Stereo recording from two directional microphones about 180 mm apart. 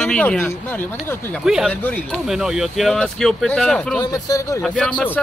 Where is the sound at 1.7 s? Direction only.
10° left (ahead or behind).